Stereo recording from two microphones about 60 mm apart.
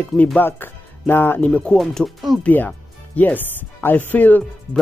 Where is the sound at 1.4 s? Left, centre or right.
Centre.